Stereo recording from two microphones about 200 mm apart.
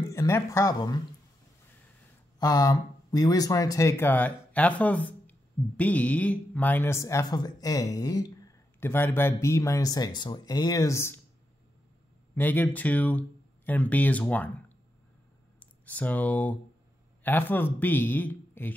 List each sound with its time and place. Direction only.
0.0 s speech: 15° left (ahead or behind)
2.3 s speech: 20° left (ahead or behind)
12.4 s speech: 10° left (ahead or behind)
15.6 s a man's voice: 5° left (ahead or behind)